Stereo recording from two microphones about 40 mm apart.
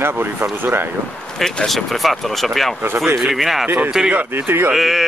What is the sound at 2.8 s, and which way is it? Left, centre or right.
Speech, right.